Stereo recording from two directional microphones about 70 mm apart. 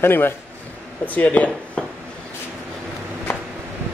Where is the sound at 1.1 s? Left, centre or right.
Left.